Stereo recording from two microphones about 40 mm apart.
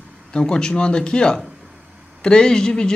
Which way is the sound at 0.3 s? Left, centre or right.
Centre.